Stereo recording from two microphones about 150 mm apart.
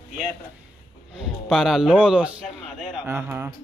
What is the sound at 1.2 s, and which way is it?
A man's voice, centre (ahead or behind).